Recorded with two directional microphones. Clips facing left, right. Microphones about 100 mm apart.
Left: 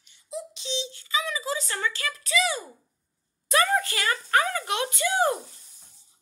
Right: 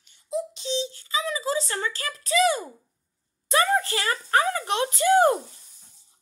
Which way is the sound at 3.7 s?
30° right (ahead or behind).